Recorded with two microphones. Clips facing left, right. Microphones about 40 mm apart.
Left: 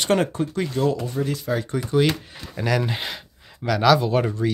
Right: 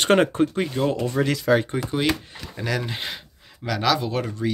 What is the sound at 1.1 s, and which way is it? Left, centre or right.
Speech, right.